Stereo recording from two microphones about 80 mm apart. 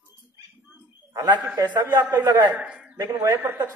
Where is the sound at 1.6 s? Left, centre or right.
Right.